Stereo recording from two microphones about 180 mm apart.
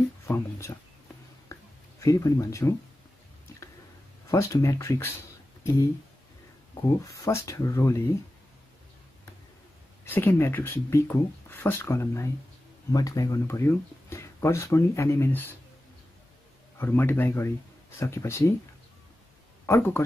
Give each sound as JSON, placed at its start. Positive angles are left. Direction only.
{"t": 0.3, "sound": "speech", "side_deg": 15}
{"t": 1.5, "sound": "a sound", "side_deg": 20}
{"t": 4.3, "sound": "speech", "side_deg": 15}
{"t": 7.1, "sound": "speech", "side_deg": 15}
{"t": 10.0, "sound": "speech", "side_deg": 10}
{"t": 16.7, "sound": "speech", "side_deg": 10}
{"t": 19.6, "sound": "speech", "side_deg": 15}